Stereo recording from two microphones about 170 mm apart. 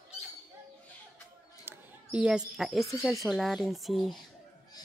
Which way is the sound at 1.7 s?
5° right (ahead or behind).